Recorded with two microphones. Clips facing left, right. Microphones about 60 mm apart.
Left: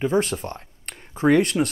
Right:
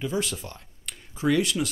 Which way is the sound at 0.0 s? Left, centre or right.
Left.